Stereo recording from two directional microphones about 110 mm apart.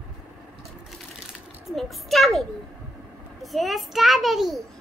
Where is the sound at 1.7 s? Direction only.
Centre (ahead or behind).